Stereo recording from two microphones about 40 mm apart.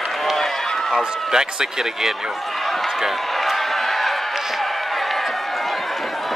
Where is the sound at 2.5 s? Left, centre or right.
Centre.